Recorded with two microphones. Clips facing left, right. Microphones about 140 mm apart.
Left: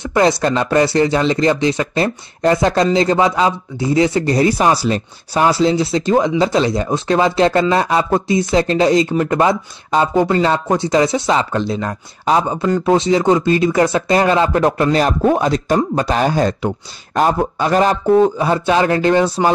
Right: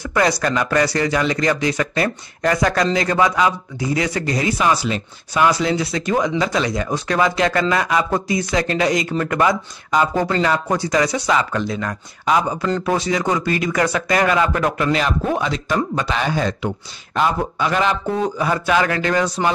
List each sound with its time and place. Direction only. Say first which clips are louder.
0.0 s speech: left 4 dB; 25° left (ahead or behind)